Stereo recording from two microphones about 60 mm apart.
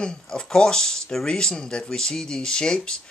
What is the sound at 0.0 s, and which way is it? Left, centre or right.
Speech, centre.